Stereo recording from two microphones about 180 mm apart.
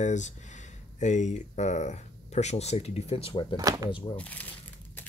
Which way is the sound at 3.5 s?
20° right (ahead or behind).